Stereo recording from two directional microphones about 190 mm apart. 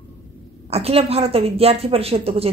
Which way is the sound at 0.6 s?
30° right (ahead or behind).